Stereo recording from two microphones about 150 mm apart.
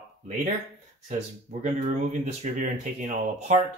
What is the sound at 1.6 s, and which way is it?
Speech, 50° right (ahead or behind).